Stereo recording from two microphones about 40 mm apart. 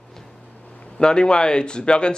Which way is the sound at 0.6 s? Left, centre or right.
Left.